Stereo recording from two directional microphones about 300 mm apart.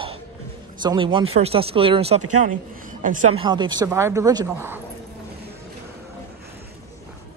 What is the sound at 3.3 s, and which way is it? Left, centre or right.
Speech, centre.